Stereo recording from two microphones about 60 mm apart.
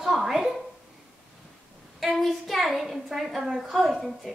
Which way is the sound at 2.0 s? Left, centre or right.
Centre.